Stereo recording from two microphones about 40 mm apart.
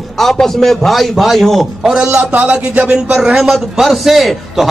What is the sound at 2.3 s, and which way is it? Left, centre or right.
Speech, right.